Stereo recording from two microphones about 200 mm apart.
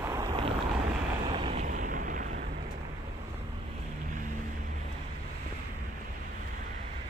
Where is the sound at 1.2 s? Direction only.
25° right (ahead or behind).